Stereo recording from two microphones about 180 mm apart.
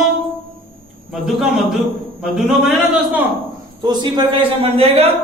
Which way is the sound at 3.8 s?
25° right (ahead or behind).